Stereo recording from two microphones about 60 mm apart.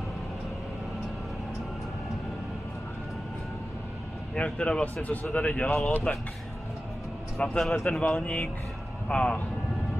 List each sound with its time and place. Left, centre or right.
4.4 s speech: centre
7.3 s a man's voice: centre
8.0 s speech: centre